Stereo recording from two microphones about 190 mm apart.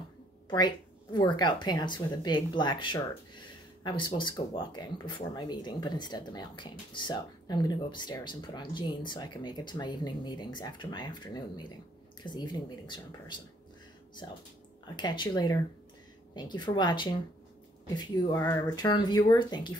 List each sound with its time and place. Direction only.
0.5 s speech: 20° left (ahead or behind)
15.0 s speech: 20° left (ahead or behind)